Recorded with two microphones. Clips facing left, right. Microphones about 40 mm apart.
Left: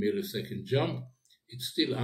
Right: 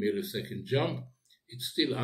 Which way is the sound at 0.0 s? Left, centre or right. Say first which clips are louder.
Left 1 dB; centre.